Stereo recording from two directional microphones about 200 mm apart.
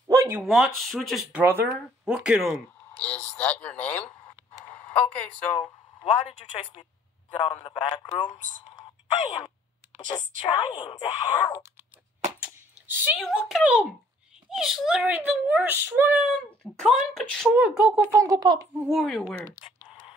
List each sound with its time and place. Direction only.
0.1 s a sound: 15° right (ahead or behind)
0.4 s speech: centre (ahead or behind)
6.2 s speech: 25° left (ahead or behind)
10.1 s speech: 25° left (ahead or behind)
12.8 s a child's voice: 10° right (ahead or behind)
16.2 s speech: 5° left (ahead or behind)
18.1 s a child's voice: 15° right (ahead or behind)
18.9 s speech: centre (ahead or behind)
19.6 s a sound: 25° left (ahead or behind)